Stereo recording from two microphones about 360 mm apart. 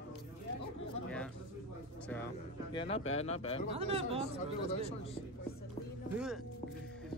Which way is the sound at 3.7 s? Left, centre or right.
Centre.